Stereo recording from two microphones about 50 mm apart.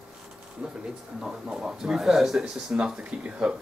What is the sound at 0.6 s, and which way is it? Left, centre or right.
Speech, centre.